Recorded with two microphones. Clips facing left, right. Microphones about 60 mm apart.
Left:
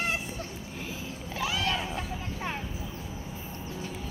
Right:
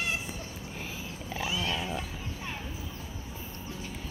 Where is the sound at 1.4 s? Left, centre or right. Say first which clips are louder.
Left 3 dB; left.